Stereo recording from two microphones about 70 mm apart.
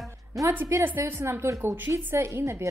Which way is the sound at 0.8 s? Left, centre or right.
Right.